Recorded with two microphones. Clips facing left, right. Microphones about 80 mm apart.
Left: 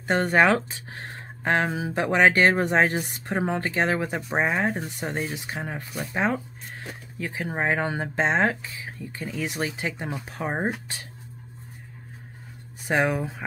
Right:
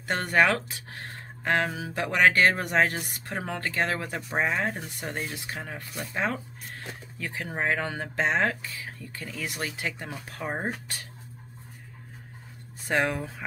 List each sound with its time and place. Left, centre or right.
0.1 s speech: left
12.8 s speech: centre